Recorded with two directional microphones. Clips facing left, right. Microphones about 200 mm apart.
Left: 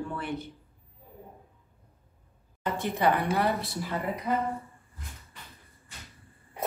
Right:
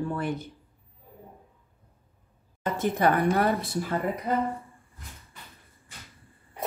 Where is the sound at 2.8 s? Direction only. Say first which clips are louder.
Right 3 dB; 50° right (ahead or behind).